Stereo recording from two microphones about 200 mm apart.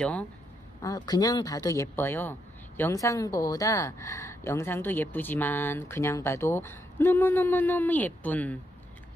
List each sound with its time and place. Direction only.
0.0 s speech: 5° left (ahead or behind)
0.7 s speech: 20° left (ahead or behind)